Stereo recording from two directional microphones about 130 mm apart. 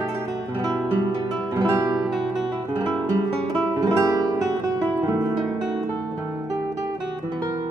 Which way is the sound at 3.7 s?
25° right (ahead or behind).